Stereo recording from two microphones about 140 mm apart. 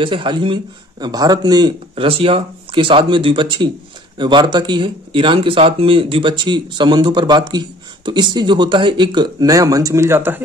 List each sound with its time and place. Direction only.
0.0 s speech: 35° right (ahead or behind); by 10.4 s 15° right (ahead or behind)